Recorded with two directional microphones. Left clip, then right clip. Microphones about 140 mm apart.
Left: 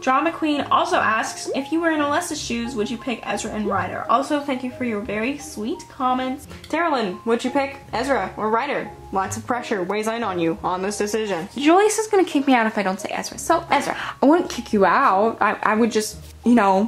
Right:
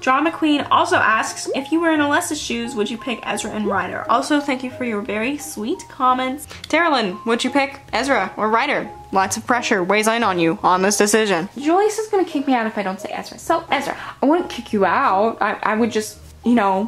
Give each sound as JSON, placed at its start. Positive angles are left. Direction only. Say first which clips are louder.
{"t": 0.0, "sound": "speech", "louder": "right 2 dB", "side_deg": -35}
{"t": 6.7, "sound": "speech", "louder": "right 4 dB", "side_deg": -25}
{"t": 11.6, "sound": "speech", "louder": "left 3 dB", "side_deg": 20}